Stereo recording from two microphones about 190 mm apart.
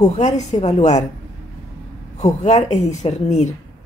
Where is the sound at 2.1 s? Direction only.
35° left (ahead or behind).